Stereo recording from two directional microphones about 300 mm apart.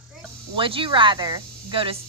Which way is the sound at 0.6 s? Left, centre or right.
Centre.